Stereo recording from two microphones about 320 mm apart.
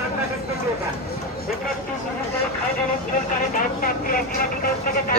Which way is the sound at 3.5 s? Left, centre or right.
Left.